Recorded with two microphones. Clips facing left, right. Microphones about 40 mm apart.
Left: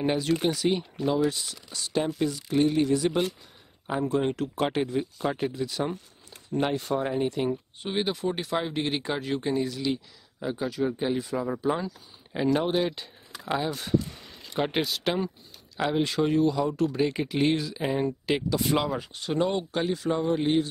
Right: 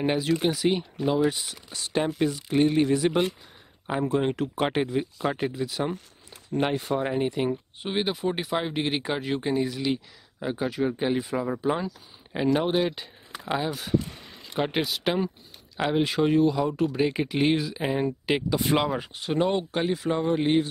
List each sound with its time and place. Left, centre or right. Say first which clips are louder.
0.0 s speech: right 1 dB; centre
18.5 s speech: right 2 dB; right